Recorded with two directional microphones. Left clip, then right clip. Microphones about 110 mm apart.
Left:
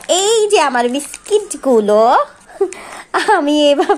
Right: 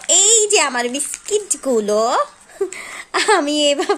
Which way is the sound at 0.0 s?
Centre (ahead or behind).